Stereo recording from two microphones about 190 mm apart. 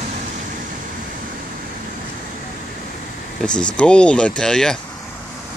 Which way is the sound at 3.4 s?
5° left (ahead or behind).